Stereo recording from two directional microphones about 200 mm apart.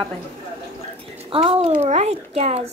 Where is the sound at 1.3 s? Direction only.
30° right (ahead or behind).